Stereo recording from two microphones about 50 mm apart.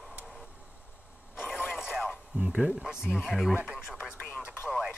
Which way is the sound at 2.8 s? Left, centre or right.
Centre.